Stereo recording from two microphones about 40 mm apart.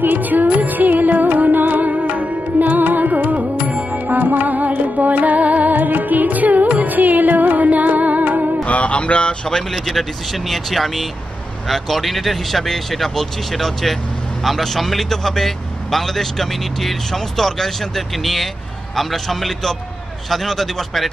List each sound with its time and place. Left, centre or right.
0.0 s music: right
8.6 s a sound: left
9.7 s a man's voice: centre